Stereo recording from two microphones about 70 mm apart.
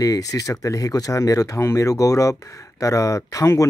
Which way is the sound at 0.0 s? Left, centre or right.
Left.